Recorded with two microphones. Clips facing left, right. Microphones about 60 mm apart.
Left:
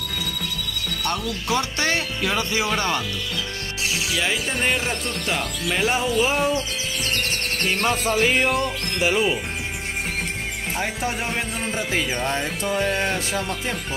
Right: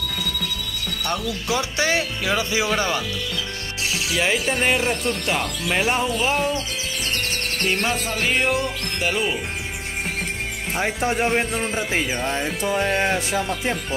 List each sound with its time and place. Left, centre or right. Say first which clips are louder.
1.0 s speech: right 1 dB; centre
4.1 s speech: right 5 dB; centre
4.6 s speech: right 2 dB; centre
7.6 s speech: left 1 dB; centre
10.8 s speech: right 6 dB; right
12.2 s speech: right 1 dB; centre
12.7 s speech: right 2 dB; centre